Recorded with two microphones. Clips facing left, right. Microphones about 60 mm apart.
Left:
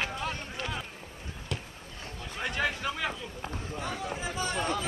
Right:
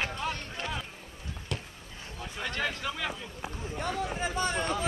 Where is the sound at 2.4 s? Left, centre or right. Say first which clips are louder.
Left 2 dB; centre.